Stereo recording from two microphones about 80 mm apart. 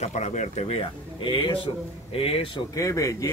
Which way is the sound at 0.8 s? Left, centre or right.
Left.